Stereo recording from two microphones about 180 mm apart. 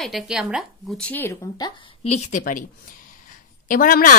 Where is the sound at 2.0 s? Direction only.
35° left (ahead or behind).